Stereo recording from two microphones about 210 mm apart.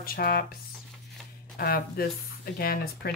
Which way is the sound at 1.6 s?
45° left (ahead or behind).